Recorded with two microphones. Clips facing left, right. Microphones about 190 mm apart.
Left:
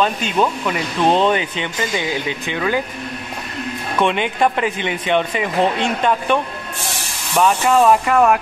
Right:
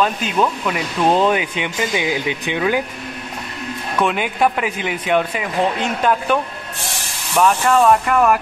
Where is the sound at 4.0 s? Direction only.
5° right (ahead or behind).